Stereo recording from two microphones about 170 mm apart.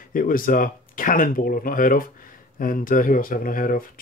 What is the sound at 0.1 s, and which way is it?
Speech, 55° left (ahead or behind).